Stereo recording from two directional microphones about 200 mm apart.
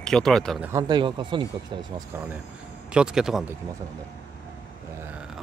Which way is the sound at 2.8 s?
5° right (ahead or behind).